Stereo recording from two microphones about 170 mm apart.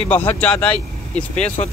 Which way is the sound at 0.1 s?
10° left (ahead or behind).